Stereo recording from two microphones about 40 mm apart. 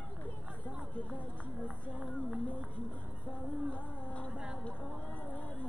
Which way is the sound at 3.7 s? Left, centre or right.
Left.